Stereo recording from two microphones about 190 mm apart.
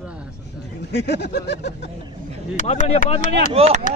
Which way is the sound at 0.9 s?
60° left (ahead or behind).